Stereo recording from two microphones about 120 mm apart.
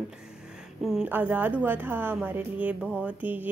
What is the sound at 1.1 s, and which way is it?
Speech, 15° right (ahead or behind).